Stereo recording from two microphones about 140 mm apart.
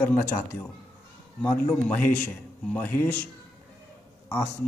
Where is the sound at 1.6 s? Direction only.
10° left (ahead or behind).